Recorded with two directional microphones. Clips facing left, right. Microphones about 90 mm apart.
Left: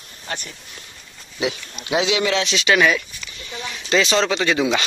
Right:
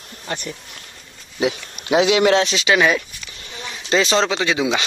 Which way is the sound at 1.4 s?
45° right (ahead or behind).